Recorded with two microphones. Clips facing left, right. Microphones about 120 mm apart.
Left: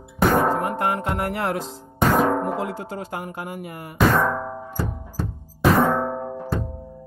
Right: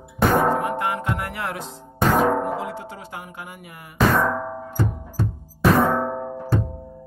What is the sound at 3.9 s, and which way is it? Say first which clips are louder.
Music: even; centre (ahead or behind).